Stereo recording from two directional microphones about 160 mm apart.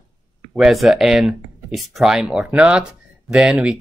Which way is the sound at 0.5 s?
Centre (ahead or behind).